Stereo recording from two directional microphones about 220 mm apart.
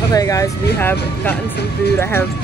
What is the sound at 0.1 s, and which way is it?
Speech, 15° left (ahead or behind).